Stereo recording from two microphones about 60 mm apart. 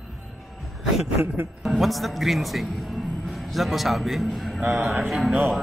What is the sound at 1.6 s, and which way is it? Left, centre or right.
Speech, centre.